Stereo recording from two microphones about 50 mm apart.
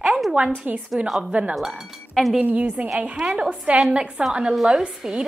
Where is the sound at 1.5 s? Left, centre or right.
Centre.